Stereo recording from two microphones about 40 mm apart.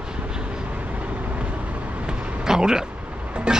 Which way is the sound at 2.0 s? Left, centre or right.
Centre.